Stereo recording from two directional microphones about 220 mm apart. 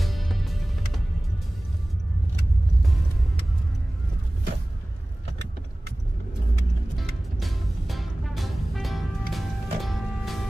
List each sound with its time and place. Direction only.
0.0 s music: centre (ahead or behind)
7.0 s music: centre (ahead or behind)